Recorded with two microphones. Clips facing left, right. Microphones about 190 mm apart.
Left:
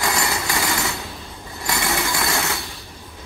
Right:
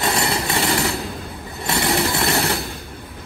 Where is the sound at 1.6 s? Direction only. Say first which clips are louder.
Right 4 dB; 30° right (ahead or behind).